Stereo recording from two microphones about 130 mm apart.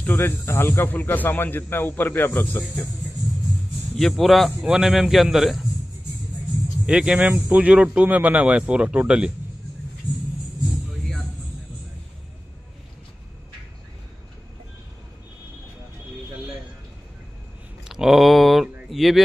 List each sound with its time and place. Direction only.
0.0 s speech: 20° left (ahead or behind)
3.9 s a man's voice: centre (ahead or behind)
6.9 s a man's voice: 5° right (ahead or behind)
17.8 s speech: 5° right (ahead or behind)